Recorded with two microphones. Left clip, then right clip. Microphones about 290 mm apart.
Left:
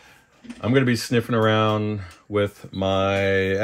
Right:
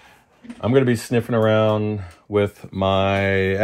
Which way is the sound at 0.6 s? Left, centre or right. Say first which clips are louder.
Right 3 dB; centre.